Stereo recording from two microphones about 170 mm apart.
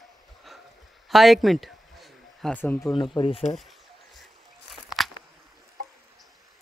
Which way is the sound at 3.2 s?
30° left (ahead or behind).